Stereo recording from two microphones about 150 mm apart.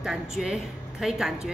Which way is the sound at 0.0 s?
5° right (ahead or behind).